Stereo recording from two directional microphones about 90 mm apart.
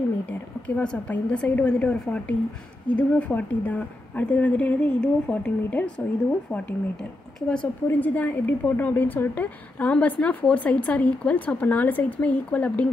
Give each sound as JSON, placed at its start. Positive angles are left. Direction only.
{"t": 0.3, "sound": "a woman's voice", "side_deg": 15}